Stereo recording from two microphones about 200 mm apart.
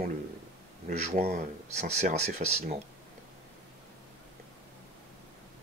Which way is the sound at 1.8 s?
35° right (ahead or behind).